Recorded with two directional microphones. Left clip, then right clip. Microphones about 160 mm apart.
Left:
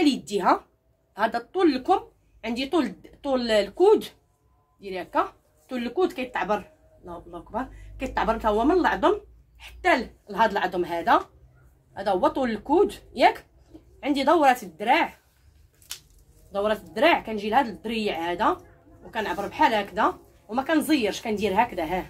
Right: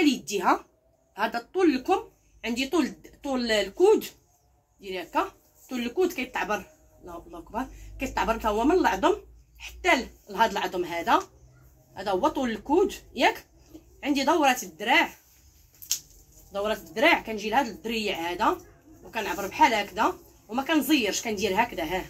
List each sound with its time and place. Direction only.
0.0 s speech: 40° left (ahead or behind)
16.5 s speech: 40° left (ahead or behind)